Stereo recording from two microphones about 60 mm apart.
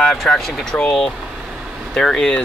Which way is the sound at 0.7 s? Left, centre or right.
Left.